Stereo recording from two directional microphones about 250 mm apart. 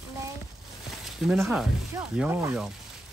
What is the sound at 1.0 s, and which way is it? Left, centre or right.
Speech, centre.